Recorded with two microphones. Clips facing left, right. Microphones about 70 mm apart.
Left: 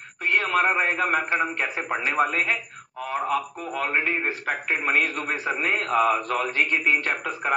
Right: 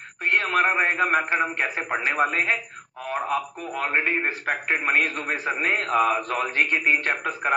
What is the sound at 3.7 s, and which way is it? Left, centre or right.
A man's voice, right.